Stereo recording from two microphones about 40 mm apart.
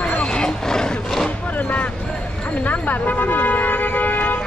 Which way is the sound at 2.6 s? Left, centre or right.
Left.